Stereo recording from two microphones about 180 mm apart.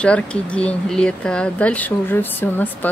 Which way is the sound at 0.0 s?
5° left (ahead or behind).